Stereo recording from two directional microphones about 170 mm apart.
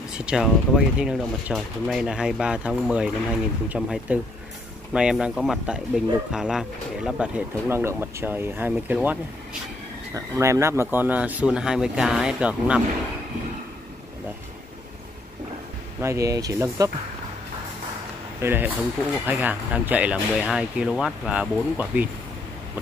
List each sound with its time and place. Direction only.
0.2 s speech: 5° right (ahead or behind)
16.0 s speech: 15° right (ahead or behind)
18.4 s speech: 10° right (ahead or behind)